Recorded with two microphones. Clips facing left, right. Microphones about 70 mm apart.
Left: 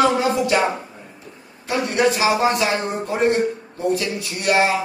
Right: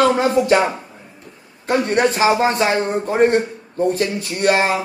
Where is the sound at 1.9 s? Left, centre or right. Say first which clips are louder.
Right 1 dB; right.